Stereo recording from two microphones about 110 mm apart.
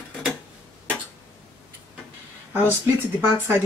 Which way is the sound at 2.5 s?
20° right (ahead or behind).